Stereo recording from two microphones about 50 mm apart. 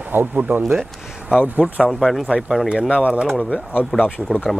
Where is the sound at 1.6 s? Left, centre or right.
Centre.